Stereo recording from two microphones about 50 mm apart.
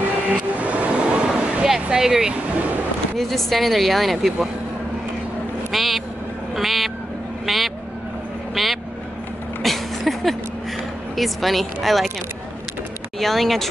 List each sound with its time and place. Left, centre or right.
0.6 s vehicle: right
1.7 s speech: centre
3.2 s speech: centre
5.7 s speech: centre
9.6 s a sound: centre
11.1 s speech: centre
13.2 s speech: centre